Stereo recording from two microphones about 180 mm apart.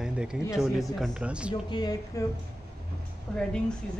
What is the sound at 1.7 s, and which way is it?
Speech, 20° left (ahead or behind).